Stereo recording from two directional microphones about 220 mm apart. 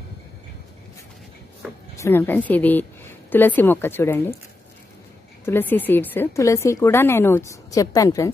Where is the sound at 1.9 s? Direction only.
10° left (ahead or behind).